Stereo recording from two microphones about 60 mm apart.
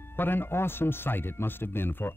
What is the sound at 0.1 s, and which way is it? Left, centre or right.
Speech, left.